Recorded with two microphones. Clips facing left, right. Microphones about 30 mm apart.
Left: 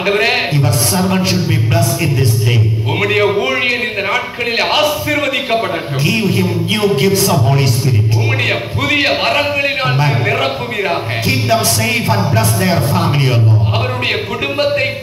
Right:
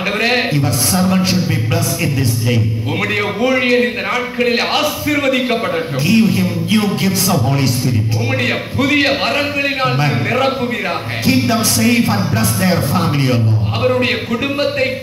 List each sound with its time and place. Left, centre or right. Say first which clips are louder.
0.1 s a man's voice: left 2 dB; centre
0.5 s music: left 1 dB; left
1.3 s a man's voice: left 1 dB; left
3.0 s a man's voice: left 4 dB; left
6.0 s music: right 1 dB; left
7.1 s a man's voice: left 3 dB; left
9.0 s a man's voice: left 2 dB; centre
11.2 s music: right 1 dB; left
12.5 s a man's voice: left 1 dB; left